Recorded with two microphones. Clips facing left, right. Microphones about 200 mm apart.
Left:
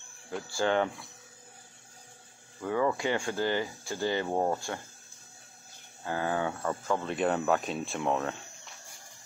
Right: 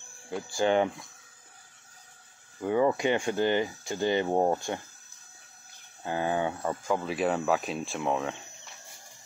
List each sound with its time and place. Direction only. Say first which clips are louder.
0.4 s speech: right 3 dB; 15° right (ahead or behind)
2.6 s speech: right 4 dB; 20° right (ahead or behind)
6.0 s speech: right 2 dB; 20° right (ahead or behind)
6.9 s speech: right 1 dB; 5° right (ahead or behind)